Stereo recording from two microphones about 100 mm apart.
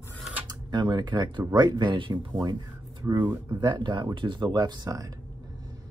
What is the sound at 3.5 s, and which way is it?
Speech, 50° right (ahead or behind).